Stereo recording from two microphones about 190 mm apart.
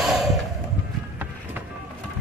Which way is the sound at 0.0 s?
Centre (ahead or behind).